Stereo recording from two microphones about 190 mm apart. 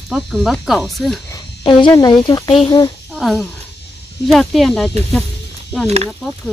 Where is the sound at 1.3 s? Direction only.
20° left (ahead or behind).